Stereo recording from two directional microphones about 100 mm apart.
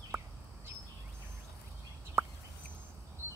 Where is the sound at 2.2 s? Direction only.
25° right (ahead or behind).